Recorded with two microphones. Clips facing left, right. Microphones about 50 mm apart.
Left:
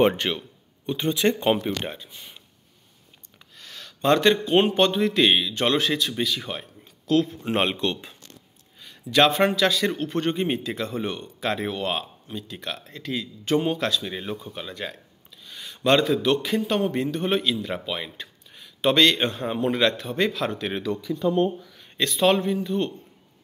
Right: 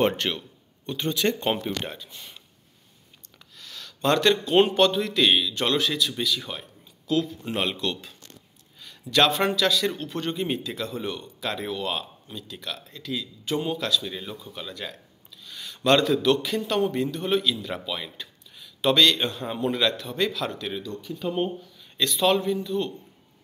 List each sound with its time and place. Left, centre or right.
0.0 s speech: centre
3.5 s a man's voice: left
18.1 s a sound: left
19.4 s a man's voice: left
21.9 s a man's voice: left